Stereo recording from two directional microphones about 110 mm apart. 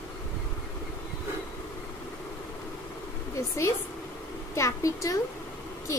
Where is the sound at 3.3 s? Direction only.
25° left (ahead or behind).